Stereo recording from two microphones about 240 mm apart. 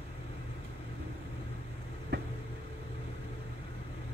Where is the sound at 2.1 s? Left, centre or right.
Right.